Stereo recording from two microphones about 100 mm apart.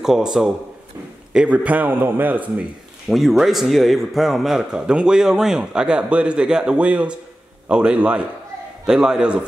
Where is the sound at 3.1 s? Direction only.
Centre (ahead or behind).